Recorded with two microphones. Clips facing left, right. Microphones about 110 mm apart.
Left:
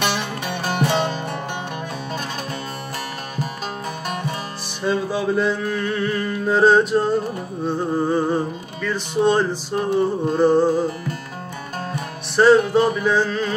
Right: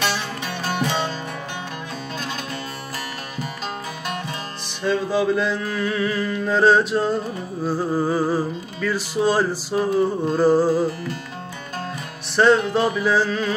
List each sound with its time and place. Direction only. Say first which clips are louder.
0.0 s music: left 2 dB; 55° left (ahead or behind)
4.8 s music: right 1 dB; 10° left (ahead or behind); by 10.8 s 5° right (ahead or behind)
11.9 s music: left 3 dB; centre (ahead or behind)